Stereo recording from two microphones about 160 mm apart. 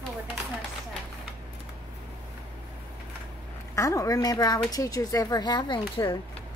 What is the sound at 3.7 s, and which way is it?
Speech, 20° left (ahead or behind).